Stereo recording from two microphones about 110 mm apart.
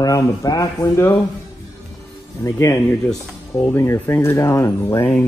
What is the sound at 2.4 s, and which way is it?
Speech, 25° left (ahead or behind).